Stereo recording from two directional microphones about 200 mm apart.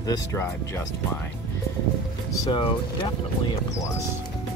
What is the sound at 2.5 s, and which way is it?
Speech, 25° left (ahead or behind).